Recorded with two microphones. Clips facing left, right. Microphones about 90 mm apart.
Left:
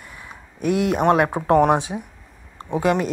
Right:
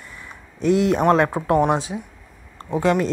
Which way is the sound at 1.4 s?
30° left (ahead or behind).